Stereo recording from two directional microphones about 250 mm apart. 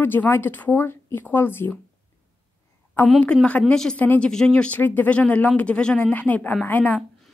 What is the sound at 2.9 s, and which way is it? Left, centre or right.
A woman's voice, centre.